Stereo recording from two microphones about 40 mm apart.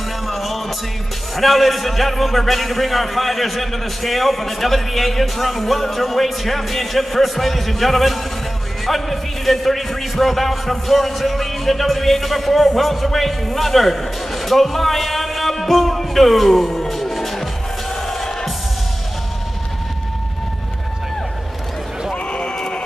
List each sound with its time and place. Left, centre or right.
0.3 s music: centre
1.3 s a man's voice: centre
18.0 s music: centre
22.1 s a sound: left